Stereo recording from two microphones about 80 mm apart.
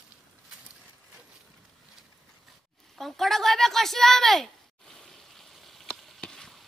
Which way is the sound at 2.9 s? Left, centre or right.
Centre.